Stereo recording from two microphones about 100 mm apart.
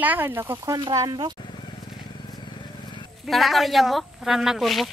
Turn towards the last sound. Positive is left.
turn(degrees=0)  # may be behind; listen again after turning